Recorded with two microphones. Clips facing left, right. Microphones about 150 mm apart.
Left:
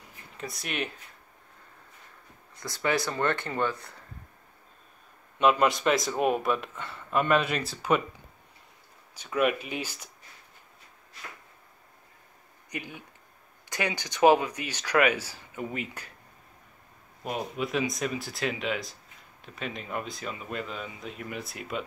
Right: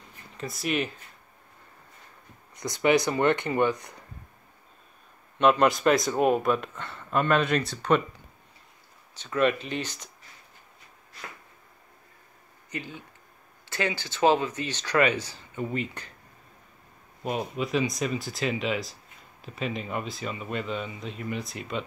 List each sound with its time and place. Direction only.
0.4 s a man's voice: centre (ahead or behind)
2.5 s speech: 20° right (ahead or behind)
5.4 s a man's voice: centre (ahead or behind)
9.1 s speech: 10° left (ahead or behind)
12.7 s speech: 15° left (ahead or behind)
17.2 s a man's voice: centre (ahead or behind)